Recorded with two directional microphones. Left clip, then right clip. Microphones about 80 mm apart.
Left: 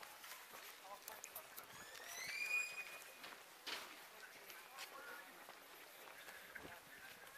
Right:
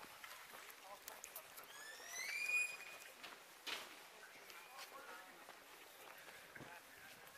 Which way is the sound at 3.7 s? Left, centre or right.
Centre.